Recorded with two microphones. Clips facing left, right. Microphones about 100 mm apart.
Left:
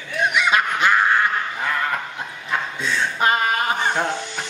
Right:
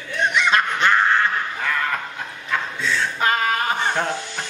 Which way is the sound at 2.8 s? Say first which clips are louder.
Left 1 dB; 15° left (ahead or behind).